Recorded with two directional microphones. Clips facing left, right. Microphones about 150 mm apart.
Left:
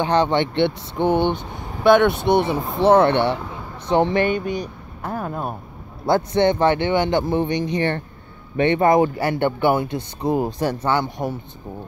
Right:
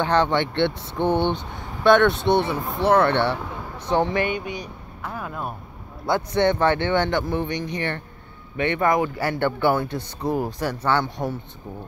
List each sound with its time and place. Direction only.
0.0 s speech: 15° left (ahead or behind)
4.3 s speech: 40° left (ahead or behind)
6.3 s speech: 20° left (ahead or behind)